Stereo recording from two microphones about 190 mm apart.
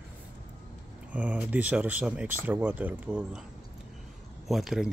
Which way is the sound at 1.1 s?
5° right (ahead or behind).